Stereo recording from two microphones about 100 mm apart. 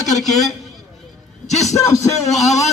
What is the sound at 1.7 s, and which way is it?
Music, 35° left (ahead or behind).